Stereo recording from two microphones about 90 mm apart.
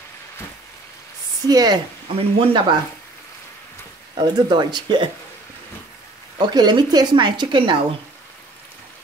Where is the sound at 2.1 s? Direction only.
90° right.